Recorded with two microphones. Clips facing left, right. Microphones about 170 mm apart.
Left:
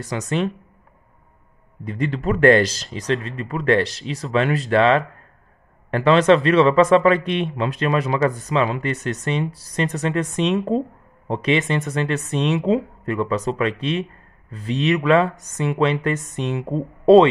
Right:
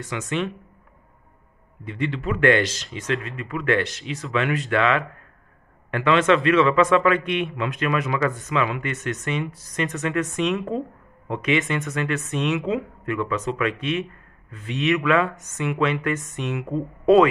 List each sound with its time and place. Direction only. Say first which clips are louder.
0.0 s speech: left 3 dB; 40° left (ahead or behind)
1.9 s speech: left 4 dB; 40° left (ahead or behind)